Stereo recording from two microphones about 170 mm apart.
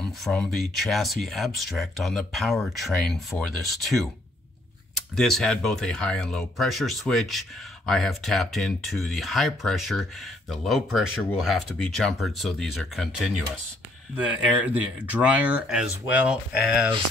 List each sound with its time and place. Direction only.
0.0 s speech: 5° left (ahead or behind)
5.1 s speech: 5° left (ahead or behind)